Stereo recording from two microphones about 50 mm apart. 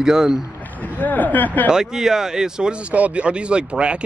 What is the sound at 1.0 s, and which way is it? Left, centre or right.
Speech, left.